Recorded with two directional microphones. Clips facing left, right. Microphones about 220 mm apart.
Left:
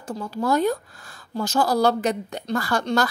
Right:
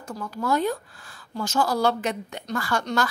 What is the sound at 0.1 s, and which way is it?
Speech, 30° left (ahead or behind).